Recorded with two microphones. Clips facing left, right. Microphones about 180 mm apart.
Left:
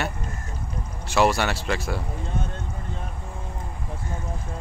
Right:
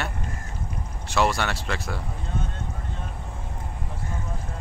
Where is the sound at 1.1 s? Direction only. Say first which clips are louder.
Left 3 dB; 5° left (ahead or behind).